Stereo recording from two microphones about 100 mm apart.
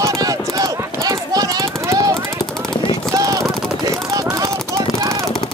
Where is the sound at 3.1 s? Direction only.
30° right (ahead or behind).